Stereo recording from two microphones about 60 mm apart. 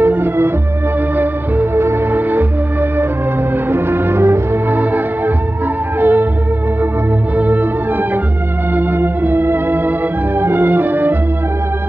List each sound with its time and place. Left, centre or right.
0.0 s music: right
3.7 s music: right
4.7 s music: right
7.3 s music: right
8.7 s organ: right
10.4 s music: right